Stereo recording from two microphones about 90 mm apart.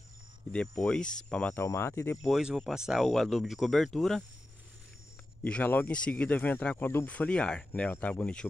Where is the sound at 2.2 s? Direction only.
Centre (ahead or behind).